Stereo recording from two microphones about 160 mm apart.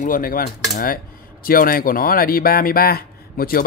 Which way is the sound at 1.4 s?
65° left (ahead or behind).